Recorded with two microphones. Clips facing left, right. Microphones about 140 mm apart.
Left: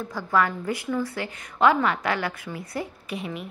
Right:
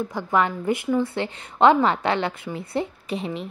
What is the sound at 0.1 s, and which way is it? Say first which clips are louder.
A woman's voice: left 1 dB; 20° right (ahead or behind).